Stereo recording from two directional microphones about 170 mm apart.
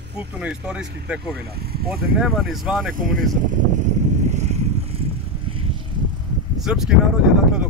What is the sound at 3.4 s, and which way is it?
Vehicle, 45° right (ahead or behind).